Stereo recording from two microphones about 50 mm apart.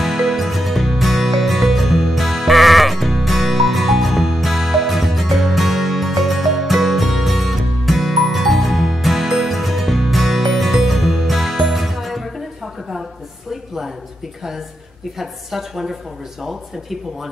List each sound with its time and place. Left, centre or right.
0.0 s music: centre
15.1 s a woman's voice: centre